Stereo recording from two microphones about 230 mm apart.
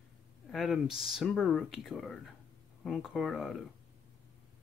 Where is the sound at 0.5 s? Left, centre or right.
Centre.